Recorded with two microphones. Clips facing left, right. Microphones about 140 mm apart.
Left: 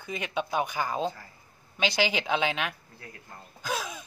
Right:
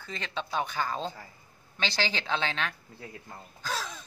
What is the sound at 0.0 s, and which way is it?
Speech, 15° left (ahead or behind).